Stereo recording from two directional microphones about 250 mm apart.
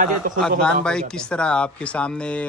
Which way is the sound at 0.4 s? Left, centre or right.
Centre.